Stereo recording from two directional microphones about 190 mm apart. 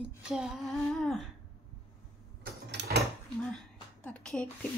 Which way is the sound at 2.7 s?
65° right (ahead or behind).